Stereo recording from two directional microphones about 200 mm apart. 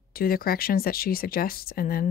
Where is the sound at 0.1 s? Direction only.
45° left (ahead or behind).